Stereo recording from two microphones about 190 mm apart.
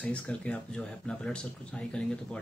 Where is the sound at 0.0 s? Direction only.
5° left (ahead or behind).